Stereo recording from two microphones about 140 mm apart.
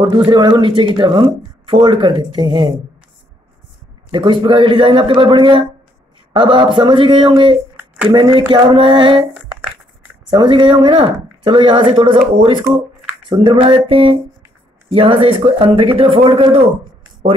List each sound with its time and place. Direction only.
0.0 s speech: 35° right (ahead or behind)
4.1 s speech: 35° right (ahead or behind)
7.7 s a sound: 10° right (ahead or behind)
8.1 s speech: 35° right (ahead or behind)
10.3 s speech: 35° right (ahead or behind)